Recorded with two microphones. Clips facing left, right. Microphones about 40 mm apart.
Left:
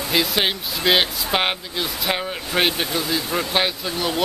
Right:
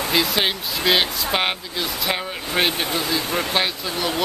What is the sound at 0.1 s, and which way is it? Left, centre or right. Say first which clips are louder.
Speech: left 1 dB; centre.